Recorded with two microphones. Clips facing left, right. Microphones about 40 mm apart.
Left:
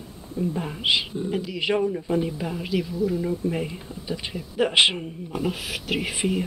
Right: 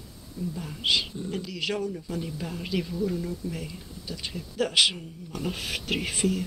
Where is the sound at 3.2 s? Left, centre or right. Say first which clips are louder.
Left 7 dB; left.